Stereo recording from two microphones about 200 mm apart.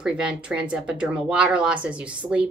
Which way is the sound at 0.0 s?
5° right (ahead or behind).